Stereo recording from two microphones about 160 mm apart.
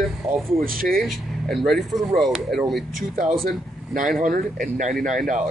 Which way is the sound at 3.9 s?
60° right (ahead or behind).